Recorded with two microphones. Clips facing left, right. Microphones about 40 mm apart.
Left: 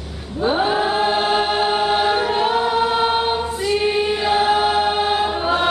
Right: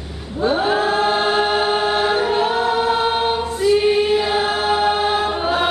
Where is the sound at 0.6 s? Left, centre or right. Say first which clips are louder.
Right 1 dB; centre.